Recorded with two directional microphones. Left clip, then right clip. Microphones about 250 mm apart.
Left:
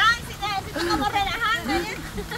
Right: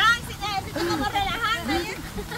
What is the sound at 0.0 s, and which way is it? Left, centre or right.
Vehicle, centre.